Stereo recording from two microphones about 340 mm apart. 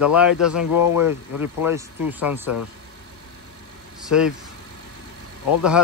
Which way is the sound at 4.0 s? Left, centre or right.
Centre.